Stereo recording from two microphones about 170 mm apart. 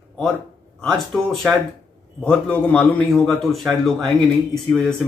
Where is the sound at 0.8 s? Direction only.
Centre (ahead or behind).